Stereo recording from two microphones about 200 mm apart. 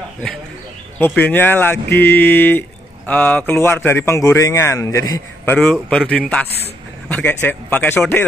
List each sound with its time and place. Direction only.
0.9 s a man's voice: 10° left (ahead or behind)